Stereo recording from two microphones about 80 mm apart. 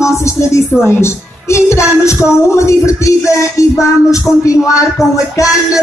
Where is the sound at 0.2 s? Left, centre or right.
Left.